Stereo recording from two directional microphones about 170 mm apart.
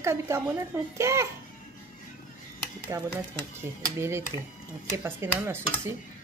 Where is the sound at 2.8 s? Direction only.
15° right (ahead or behind).